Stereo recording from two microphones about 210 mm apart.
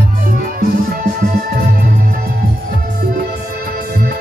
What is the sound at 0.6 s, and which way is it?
Music, 45° right (ahead or behind).